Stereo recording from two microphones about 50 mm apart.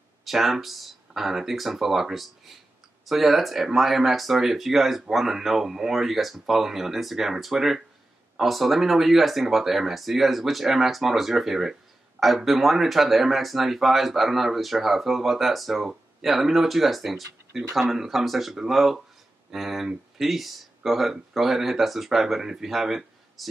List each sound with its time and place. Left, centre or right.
0.2 s speech: centre